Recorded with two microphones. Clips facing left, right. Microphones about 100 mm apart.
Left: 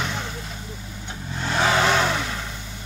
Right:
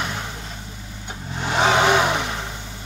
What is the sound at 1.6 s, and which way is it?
Vehicle, 20° right (ahead or behind).